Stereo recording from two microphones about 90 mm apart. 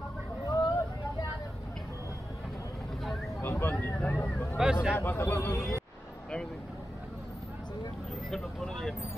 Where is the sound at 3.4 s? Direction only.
25° left (ahead or behind).